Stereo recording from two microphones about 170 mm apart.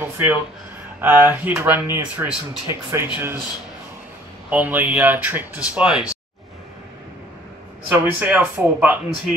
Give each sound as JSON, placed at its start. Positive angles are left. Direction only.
{"t": 0.0, "sound": "speech", "side_deg": -10}
{"t": 4.5, "sound": "speech", "side_deg": -10}
{"t": 7.9, "sound": "speech", "side_deg": -10}